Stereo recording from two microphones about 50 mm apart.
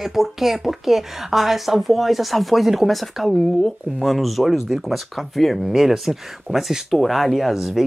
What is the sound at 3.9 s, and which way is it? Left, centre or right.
Speech, centre.